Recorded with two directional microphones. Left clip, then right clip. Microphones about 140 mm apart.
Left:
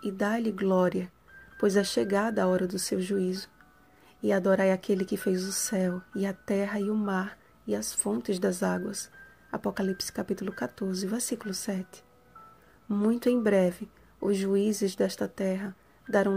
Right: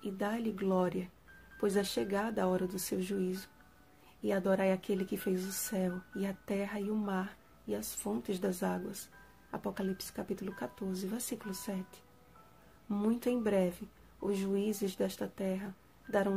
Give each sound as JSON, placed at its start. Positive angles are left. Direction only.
{"t": 0.0, "sound": "speech", "side_deg": 40}